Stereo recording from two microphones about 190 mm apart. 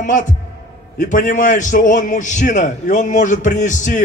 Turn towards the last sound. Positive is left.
turn(degrees=40)  # may be behind; listen again after turning